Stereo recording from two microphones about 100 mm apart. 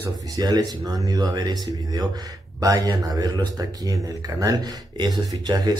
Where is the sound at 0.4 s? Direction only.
40° right (ahead or behind).